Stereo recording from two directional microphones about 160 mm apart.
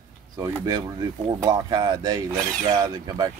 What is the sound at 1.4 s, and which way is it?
Speech, 25° right (ahead or behind).